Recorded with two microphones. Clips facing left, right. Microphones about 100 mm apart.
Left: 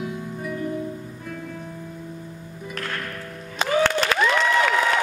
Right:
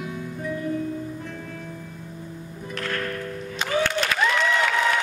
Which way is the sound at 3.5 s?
90° left.